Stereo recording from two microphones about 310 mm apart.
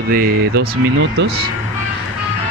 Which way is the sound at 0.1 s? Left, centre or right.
Right.